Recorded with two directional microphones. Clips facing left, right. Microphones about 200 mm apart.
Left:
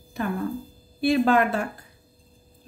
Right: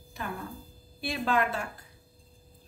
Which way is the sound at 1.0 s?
60° left (ahead or behind).